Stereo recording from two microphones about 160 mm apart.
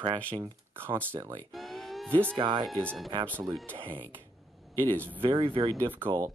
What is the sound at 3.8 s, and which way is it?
Speech, 35° right (ahead or behind).